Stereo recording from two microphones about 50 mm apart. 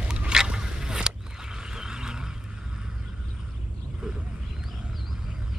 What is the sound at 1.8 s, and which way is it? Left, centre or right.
Vehicle, centre.